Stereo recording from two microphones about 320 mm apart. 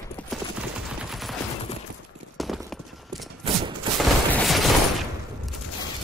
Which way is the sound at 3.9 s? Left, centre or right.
Centre.